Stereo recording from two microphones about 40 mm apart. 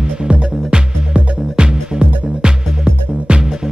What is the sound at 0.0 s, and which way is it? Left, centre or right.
Music, right.